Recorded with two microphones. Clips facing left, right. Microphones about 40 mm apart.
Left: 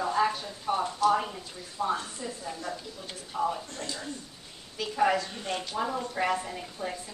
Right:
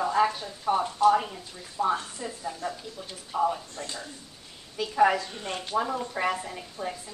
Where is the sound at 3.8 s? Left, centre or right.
Left.